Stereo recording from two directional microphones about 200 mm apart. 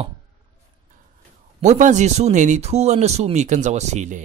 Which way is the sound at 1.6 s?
35° right (ahead or behind).